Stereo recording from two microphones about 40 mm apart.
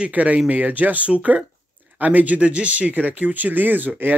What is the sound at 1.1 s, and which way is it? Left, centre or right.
Speech, right.